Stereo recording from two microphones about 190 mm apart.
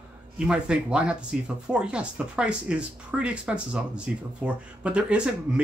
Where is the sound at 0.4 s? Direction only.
5° right (ahead or behind).